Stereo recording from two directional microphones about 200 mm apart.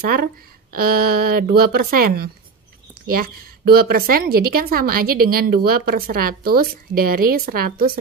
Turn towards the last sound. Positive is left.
turn(degrees=-50)  # may be behind; listen again after turning